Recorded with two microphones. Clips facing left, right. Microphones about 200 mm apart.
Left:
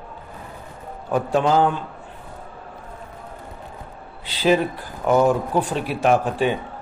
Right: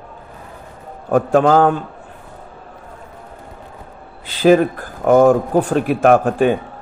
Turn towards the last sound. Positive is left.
turn(degrees=-50)  # may be behind; listen again after turning